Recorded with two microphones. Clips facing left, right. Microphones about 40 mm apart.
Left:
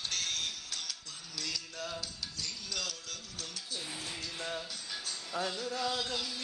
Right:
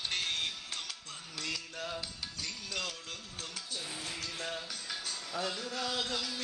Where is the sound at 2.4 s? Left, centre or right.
Right.